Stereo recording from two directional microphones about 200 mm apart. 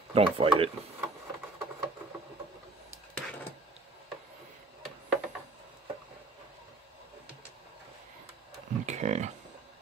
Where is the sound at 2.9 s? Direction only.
10° left (ahead or behind).